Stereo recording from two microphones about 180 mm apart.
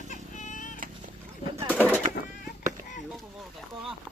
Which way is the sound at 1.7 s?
10° left (ahead or behind).